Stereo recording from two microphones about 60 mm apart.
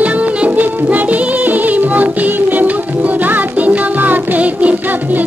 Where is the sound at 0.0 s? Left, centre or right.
Right.